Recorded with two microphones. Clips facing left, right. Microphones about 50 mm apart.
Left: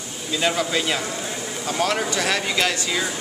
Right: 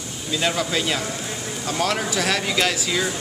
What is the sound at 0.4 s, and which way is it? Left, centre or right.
Speech, centre.